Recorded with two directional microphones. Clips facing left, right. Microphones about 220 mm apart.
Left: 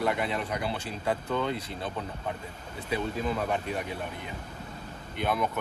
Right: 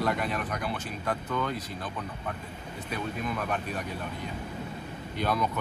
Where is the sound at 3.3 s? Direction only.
25° left (ahead or behind).